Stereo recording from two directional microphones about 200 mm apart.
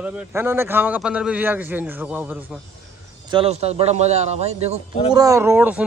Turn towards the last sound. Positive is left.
turn(degrees=-10)  # may be behind; listen again after turning